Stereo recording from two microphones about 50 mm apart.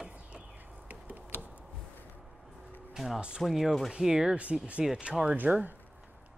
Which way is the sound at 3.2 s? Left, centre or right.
Centre.